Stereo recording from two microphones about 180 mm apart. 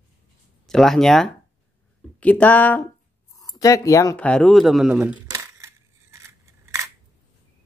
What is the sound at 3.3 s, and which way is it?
Speech, 20° left (ahead or behind).